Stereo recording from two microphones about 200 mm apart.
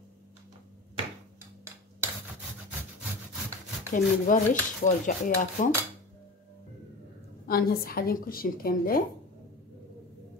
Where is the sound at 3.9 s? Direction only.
40° left (ahead or behind).